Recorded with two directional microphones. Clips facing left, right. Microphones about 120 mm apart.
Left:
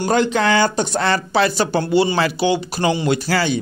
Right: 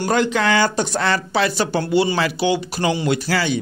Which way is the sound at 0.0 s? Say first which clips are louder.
Left 1 dB; 30° left (ahead or behind).